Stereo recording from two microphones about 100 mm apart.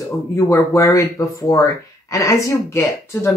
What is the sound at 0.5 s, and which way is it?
Speech, 30° left (ahead or behind).